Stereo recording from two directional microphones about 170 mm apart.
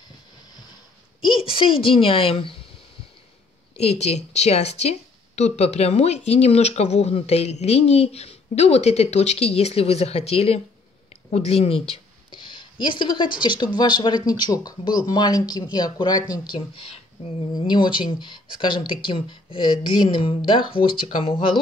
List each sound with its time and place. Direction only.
1.2 s a woman's voice: 30° left (ahead or behind)
3.7 s a woman's voice: 40° left (ahead or behind)
16.5 s speech: 35° left (ahead or behind)